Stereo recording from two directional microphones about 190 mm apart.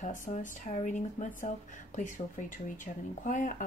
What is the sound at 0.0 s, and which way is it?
Speech, 40° left (ahead or behind).